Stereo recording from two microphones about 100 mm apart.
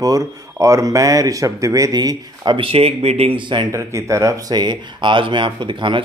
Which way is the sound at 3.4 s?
55° right (ahead or behind).